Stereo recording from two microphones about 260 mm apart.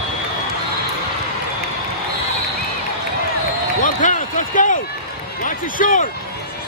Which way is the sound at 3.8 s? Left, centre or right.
Left.